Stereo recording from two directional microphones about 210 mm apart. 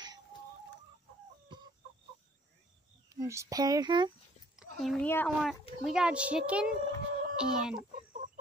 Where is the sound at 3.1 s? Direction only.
15° right (ahead or behind).